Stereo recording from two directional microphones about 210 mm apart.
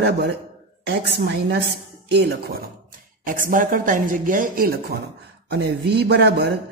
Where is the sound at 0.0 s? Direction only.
55° right (ahead or behind).